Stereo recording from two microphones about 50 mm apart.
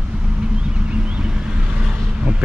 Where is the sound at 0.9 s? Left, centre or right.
Right.